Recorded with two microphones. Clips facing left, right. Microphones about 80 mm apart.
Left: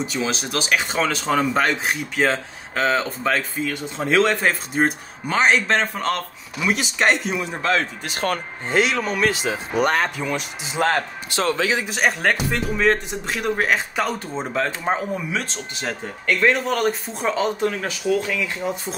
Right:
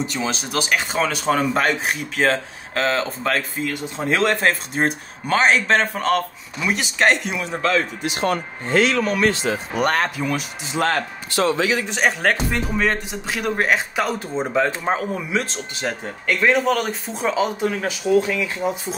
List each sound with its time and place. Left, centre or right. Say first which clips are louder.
0.0 s speech: even; centre
8.0 s speech: right 2 dB; left
8.6 s speech: right 2 dB; centre
9.3 s speech: right 2 dB; centre
9.8 s speech: left 1 dB; centre
10.9 s a man's voice: left 1 dB; left
11.9 s speech: right 1 dB; centre